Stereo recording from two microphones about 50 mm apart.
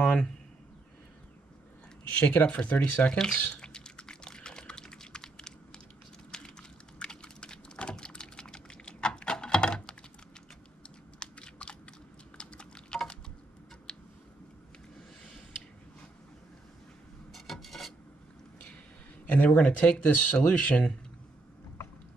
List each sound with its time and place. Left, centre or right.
0.0 s a sound: centre
2.1 s speech: left
3.3 s typing: left
11.1 s crunch: centre
12.4 s a sound: centre
17.3 s filing: centre
19.3 s speech: left